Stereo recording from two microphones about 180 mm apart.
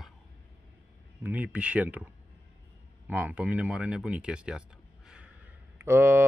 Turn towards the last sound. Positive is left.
turn(degrees=-15)  # may be behind; listen again after turning